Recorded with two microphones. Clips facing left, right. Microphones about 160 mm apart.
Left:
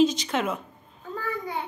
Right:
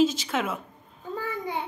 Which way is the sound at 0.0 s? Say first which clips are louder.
Left 1 dB; 5° right (ahead or behind).